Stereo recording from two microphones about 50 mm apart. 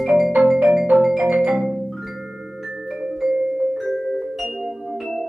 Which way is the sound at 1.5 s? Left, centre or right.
Centre.